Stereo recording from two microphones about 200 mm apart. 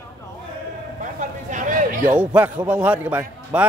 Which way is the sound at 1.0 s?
40° right (ahead or behind).